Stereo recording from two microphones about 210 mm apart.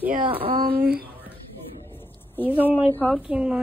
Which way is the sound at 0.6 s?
45° right (ahead or behind).